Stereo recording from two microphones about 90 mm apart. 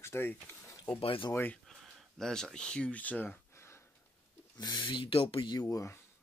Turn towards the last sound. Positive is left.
turn(degrees=35)  # may be behind; listen again after turning